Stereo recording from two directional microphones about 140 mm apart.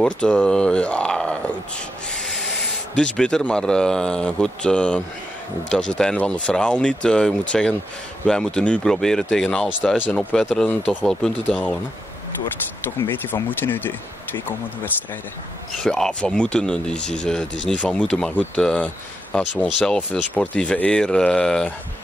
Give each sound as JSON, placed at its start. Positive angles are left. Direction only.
{"t": 0.0, "sound": "speech", "side_deg": 5}
{"t": 3.0, "sound": "speech", "side_deg": 5}
{"t": 12.8, "sound": "speech", "side_deg": 15}
{"t": 15.8, "sound": "speech", "side_deg": 5}